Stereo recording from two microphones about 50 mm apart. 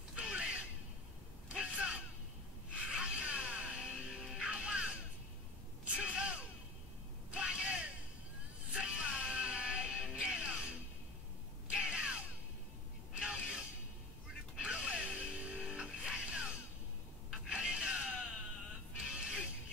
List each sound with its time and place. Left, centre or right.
0.1 s a sound: centre
1.6 s a sound: right
2.9 s music: centre
4.2 s music: centre
4.5 s music: right
5.9 s gasp: right
7.3 s a sound: centre
8.7 s music: right
11.7 s crow: centre
13.2 s music: right